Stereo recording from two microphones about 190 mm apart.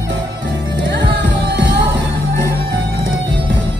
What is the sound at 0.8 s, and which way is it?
Music, 65° right (ahead or behind).